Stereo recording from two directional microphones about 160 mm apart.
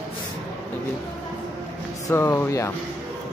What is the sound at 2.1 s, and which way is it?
Speech, 15° left (ahead or behind).